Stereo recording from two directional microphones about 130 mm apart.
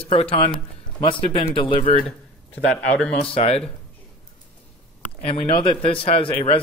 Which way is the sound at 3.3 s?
50° left (ahead or behind).